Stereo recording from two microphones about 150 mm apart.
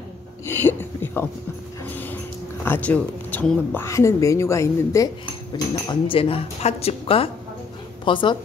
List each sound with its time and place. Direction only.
0.5 s a sound: 15° left (ahead or behind)
1.9 s dog: 15° left (ahead or behind)
2.6 s speech: 10° left (ahead or behind)
5.9 s speech: 35° left (ahead or behind)